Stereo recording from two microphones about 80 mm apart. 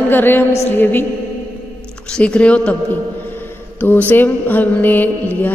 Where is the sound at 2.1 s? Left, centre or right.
Centre.